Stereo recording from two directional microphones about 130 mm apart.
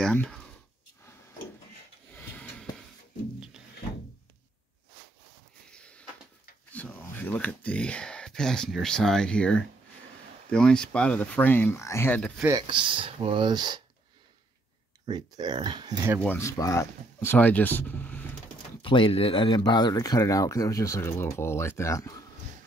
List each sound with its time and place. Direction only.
0.0 s speech: 5° left (ahead or behind)
5.7 s a sound: 10° left (ahead or behind)
6.7 s speech: 10° left (ahead or behind)
12.4 s speech: 35° right (ahead or behind)
15.0 s speech: 30° right (ahead or behind)
16.2 s speech: 20° left (ahead or behind)
18.8 s speech: 40° left (ahead or behind); by 22.2 s 25° left (ahead or behind)